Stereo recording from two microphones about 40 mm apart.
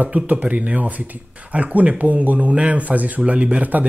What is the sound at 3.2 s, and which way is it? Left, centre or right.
Speech, right.